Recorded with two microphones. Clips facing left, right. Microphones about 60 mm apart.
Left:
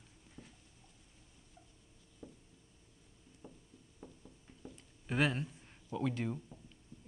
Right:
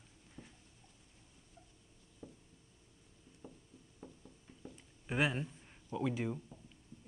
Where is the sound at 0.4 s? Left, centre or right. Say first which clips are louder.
Right 1 dB; centre.